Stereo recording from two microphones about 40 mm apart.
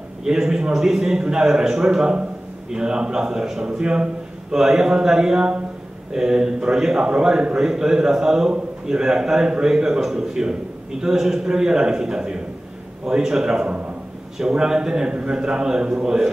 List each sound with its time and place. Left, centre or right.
0.2 s a man's voice: centre
3.8 s a man's voice: right